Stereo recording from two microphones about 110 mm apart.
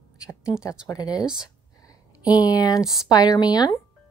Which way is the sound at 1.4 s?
35° left (ahead or behind).